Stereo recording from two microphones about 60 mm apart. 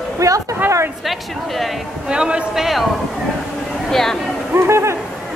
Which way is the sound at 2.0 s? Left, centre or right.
Centre.